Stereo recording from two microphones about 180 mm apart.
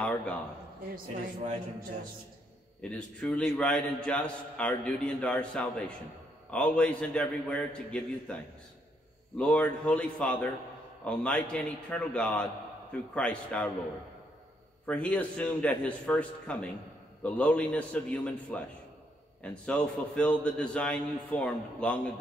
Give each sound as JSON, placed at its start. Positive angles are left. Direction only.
{"t": 0.9, "sound": "speech", "side_deg": -40}
{"t": 2.8, "sound": "a man's voice", "side_deg": 5}
{"t": 9.4, "sound": "a man's voice", "side_deg": 5}
{"t": 14.9, "sound": "a man's voice", "side_deg": 5}